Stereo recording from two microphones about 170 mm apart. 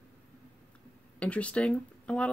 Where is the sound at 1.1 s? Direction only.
5° left (ahead or behind).